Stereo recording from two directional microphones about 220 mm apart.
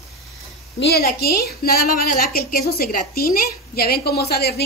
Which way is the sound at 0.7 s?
45° left (ahead or behind).